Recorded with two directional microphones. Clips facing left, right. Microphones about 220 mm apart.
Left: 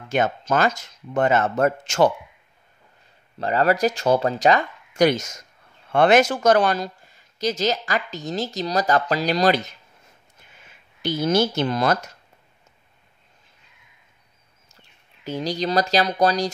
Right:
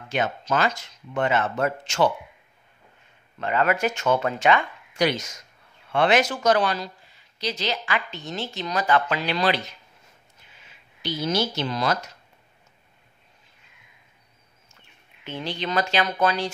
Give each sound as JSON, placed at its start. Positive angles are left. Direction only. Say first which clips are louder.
{"t": 0.1, "sound": "speech", "louder": "left 4 dB", "side_deg": 45}
{"t": 3.3, "sound": "speech", "louder": "left 3 dB", "side_deg": 35}
{"t": 14.7, "sound": "speech", "louder": "left 2 dB", "side_deg": 40}